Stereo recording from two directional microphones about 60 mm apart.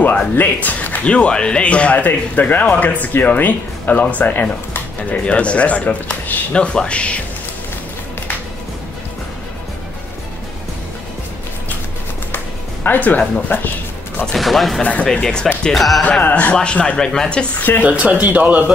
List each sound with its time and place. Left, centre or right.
0.0 s speech: left
1.0 s speech: centre
6.5 s speech: centre
12.8 s speech: left
14.3 s speech: centre
14.8 s speech: left
15.2 s speech: centre
16.0 s speech: left
16.5 s speech: centre
17.8 s a man's voice: right